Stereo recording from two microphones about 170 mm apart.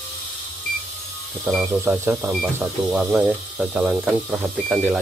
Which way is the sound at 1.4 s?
10° right (ahead or behind).